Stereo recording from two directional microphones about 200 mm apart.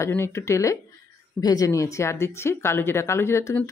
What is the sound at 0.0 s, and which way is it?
A woman's voice, 15° left (ahead or behind).